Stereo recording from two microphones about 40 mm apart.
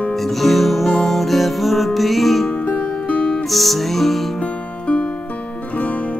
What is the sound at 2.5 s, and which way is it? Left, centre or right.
Music, left.